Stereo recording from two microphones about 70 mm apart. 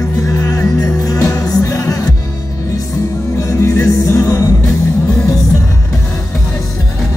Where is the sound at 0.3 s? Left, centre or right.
Left.